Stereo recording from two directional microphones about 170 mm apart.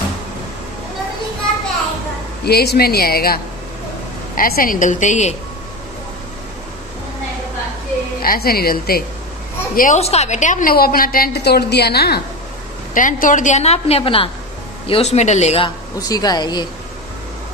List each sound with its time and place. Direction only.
2.4 s a woman's voice: 70° left (ahead or behind)
4.4 s a woman's voice: 55° left (ahead or behind)
8.2 s a woman's voice: 60° left (ahead or behind)
9.8 s a woman's voice: 45° left (ahead or behind); by 12.2 s 70° left (ahead or behind)
12.9 s a woman's voice: 50° left (ahead or behind)
16.0 s speech: 20° left (ahead or behind)